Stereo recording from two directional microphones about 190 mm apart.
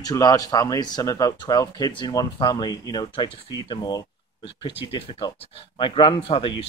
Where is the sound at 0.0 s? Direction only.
20° left (ahead or behind).